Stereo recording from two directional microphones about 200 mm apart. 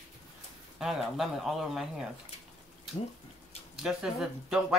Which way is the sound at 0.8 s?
Centre (ahead or behind).